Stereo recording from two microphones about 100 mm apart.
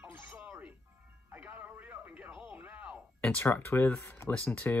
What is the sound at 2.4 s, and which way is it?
Music, 20° right (ahead or behind).